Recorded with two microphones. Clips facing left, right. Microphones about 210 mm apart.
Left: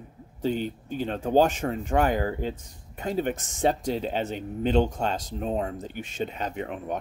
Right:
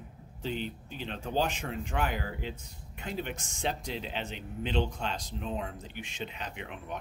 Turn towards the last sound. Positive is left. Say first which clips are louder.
# left 10 dB
turn(degrees=45)  # may be behind; listen again after turning